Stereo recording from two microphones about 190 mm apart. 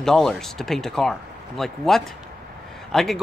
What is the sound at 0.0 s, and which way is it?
Speech, 5° left (ahead or behind).